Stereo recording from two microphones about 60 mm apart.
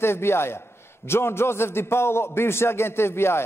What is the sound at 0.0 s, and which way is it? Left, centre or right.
A man's voice, left.